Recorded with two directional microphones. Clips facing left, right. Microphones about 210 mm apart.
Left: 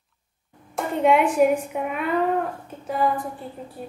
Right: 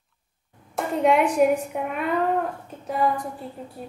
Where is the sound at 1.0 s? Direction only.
Centre (ahead or behind).